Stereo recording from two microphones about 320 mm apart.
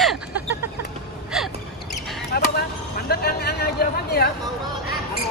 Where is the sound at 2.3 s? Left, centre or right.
Left.